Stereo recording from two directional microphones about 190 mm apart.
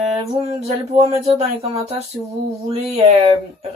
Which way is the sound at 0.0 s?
30° right (ahead or behind).